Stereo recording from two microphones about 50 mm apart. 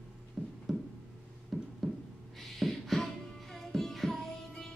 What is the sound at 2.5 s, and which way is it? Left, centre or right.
Music, centre.